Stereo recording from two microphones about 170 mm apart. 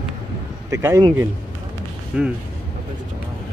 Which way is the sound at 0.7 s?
15° right (ahead or behind).